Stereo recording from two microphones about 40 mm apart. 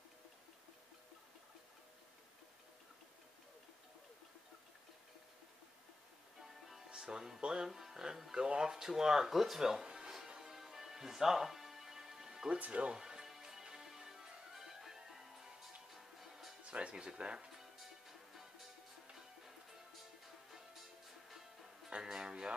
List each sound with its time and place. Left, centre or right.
6.9 s speech: centre
9.8 s music: centre
12.5 s speech: right
12.9 s music: centre
16.6 s speech: right
17.6 s music: centre
21.9 s speech: centre